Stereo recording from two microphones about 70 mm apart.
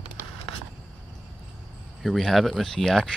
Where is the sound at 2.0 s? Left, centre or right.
Centre.